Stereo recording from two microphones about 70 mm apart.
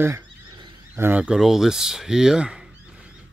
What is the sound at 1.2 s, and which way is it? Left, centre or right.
Speech, centre.